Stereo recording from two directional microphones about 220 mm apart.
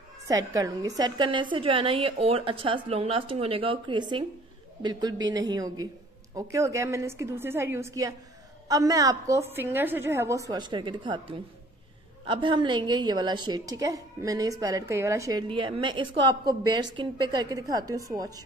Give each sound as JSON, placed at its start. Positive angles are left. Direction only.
{"t": 0.3, "sound": "a woman's voice", "side_deg": -15}